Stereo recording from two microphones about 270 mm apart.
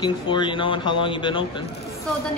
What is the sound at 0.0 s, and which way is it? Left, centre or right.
Speech, centre.